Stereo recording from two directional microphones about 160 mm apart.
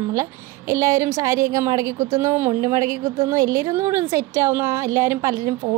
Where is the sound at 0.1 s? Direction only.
20° right (ahead or behind).